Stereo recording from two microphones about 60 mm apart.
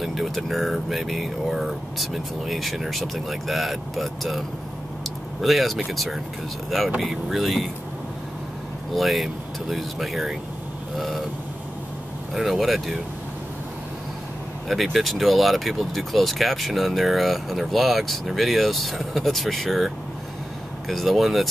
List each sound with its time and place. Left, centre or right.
0.0 s speech: centre
5.0 s a sound: centre
5.9 s speech: centre
8.9 s speech: centre
12.4 s speech: centre
14.7 s speech: centre
20.9 s speech: centre